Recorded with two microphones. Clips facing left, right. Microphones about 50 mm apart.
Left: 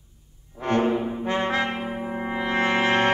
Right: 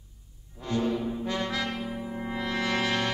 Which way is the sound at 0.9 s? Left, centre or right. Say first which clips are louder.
Left 5 dB; left.